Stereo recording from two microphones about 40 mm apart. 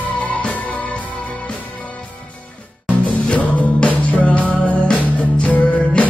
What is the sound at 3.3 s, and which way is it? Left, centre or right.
Music, left.